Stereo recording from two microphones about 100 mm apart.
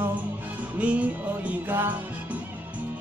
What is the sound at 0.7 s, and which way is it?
Music, 15° right (ahead or behind).